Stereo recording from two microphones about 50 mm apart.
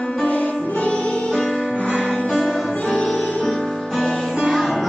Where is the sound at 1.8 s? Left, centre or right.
Left.